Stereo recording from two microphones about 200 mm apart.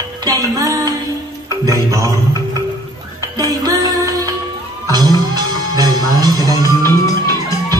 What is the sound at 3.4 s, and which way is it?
Music, 15° right (ahead or behind).